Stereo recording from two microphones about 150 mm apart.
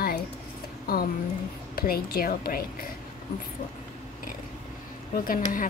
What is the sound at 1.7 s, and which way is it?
Speech, 85° left.